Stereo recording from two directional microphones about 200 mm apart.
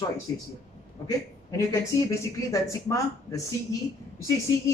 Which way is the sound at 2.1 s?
15° left (ahead or behind).